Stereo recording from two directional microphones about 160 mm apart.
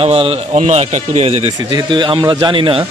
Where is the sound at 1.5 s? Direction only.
30° right (ahead or behind).